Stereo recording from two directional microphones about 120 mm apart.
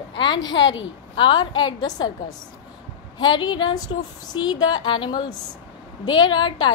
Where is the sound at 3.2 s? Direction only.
40° left (ahead or behind).